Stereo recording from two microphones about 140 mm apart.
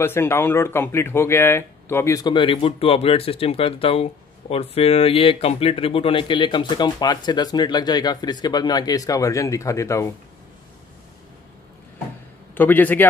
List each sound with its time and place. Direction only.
0.0 s speech: 15° left (ahead or behind)
12.5 s a man's voice: 15° left (ahead or behind)